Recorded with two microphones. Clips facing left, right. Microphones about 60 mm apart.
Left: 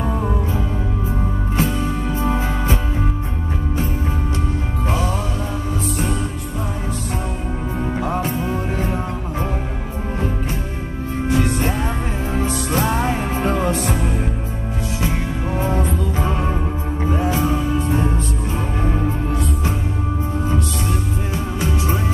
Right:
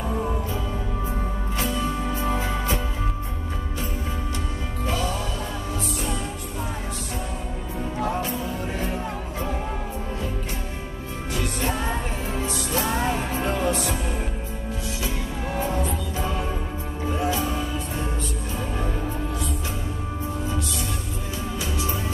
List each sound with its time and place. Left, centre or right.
1.6 s music: left
4.8 s music: left
8.0 s music: left
11.2 s music: left
12.4 s music: left
15.6 s music: left
21.5 s music: left